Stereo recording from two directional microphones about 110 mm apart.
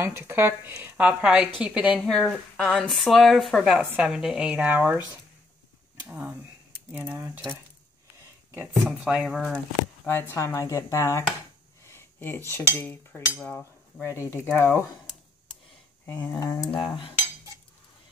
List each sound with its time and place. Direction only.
0.0 s a woman's voice: 20° right (ahead or behind)
2.0 s a woman's voice: 5° left (ahead or behind); by 5.0 s 15° right (ahead or behind)
6.0 s a woman's voice: 15° right (ahead or behind)
8.5 s speech: 25° right (ahead or behind)
9.0 s speech: 5° right (ahead or behind)
10.0 s speech: 20° left (ahead or behind)
11.9 s cutlery: 20° left (ahead or behind)
14.0 s speech: 25° left (ahead or behind)
16.1 s a sound: 15° left (ahead or behind)
16.8 s cutlery: 50° left (ahead or behind)